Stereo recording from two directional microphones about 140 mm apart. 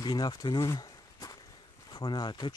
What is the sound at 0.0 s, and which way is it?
Walk, 30° left (ahead or behind).